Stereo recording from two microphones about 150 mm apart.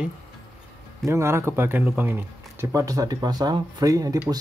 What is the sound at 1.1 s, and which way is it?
Speech, 20° right (ahead or behind).